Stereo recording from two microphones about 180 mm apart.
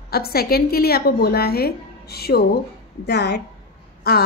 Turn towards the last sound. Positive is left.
turn(degrees=60)  # may be behind; listen again after turning